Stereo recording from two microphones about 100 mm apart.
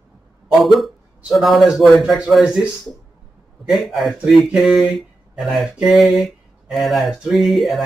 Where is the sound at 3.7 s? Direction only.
Centre (ahead or behind).